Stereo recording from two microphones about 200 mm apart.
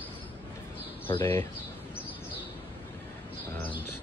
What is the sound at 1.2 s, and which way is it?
Speech, 10° left (ahead or behind).